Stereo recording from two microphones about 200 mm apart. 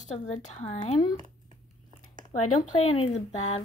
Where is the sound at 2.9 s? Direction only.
30° left (ahead or behind).